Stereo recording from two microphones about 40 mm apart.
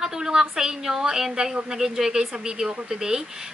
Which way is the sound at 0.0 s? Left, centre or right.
Centre.